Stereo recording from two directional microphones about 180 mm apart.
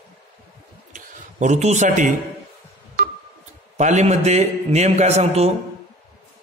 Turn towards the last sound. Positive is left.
turn(degrees=-35)  # may be behind; listen again after turning